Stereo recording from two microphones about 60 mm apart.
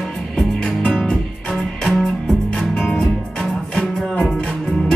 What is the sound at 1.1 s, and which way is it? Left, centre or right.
Music, centre.